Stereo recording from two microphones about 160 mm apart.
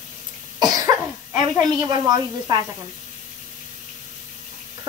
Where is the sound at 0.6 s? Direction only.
20° right (ahead or behind).